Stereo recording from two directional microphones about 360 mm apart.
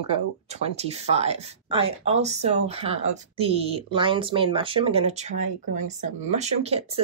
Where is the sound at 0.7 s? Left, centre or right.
Centre.